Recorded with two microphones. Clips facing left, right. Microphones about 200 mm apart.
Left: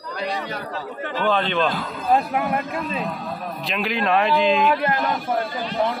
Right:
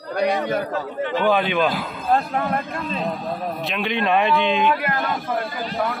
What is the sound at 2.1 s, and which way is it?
A man's voice, 10° left (ahead or behind).